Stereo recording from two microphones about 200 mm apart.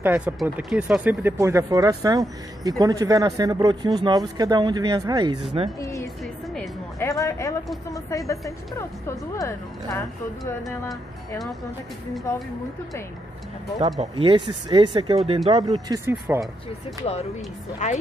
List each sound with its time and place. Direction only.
0.0 s speech: 10° right (ahead or behind)
5.8 s speech: 15° left (ahead or behind)
13.9 s speech: 25° right (ahead or behind)
17.8 s speech: 40° left (ahead or behind)